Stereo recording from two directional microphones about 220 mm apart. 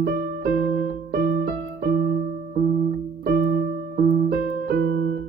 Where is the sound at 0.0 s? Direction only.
45° right (ahead or behind).